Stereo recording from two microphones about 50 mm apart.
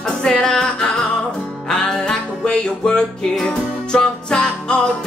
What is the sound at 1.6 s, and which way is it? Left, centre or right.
Music, centre.